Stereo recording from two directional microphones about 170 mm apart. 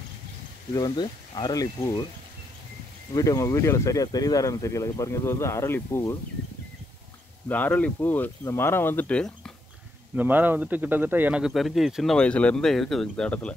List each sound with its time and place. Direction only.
0.7 s speech: 25° left (ahead or behind)
3.2 s speech: 20° left (ahead or behind)
7.4 s speech: 10° left (ahead or behind)
10.1 s speech: 10° right (ahead or behind); by 13.6 s 5° left (ahead or behind)